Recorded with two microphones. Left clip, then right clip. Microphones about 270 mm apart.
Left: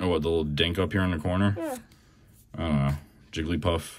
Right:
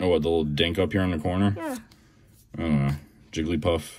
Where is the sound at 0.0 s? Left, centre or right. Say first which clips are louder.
Right 3 dB; centre.